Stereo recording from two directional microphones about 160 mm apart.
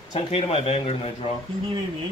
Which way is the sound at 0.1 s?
35° left (ahead or behind).